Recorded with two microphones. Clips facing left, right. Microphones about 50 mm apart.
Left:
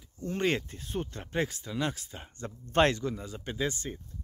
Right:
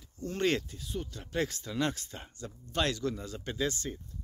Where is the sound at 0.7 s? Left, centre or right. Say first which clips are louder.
Left 3 dB; left.